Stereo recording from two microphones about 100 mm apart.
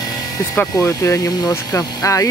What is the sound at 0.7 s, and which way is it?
Speech, 35° left (ahead or behind).